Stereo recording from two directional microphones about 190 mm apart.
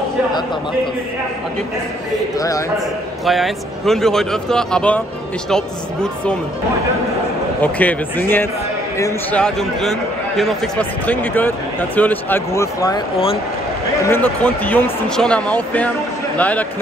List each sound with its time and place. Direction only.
2.3 s speech: 20° left (ahead or behind)
3.3 s speech: centre (ahead or behind)
7.6 s speech: 10° left (ahead or behind)
9.4 s speech: centre (ahead or behind)
14.0 s a man's voice: 10° left (ahead or behind)